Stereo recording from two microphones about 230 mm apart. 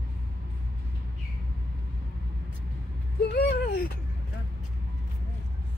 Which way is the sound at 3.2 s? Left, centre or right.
Left.